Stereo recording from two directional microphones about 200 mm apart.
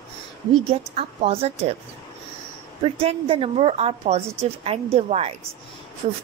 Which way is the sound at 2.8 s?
30° right (ahead or behind).